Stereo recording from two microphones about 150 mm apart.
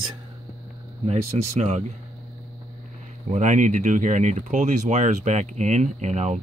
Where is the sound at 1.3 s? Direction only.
40° right (ahead or behind).